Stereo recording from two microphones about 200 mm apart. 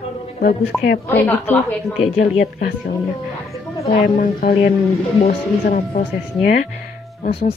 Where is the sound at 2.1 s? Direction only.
35° left (ahead or behind).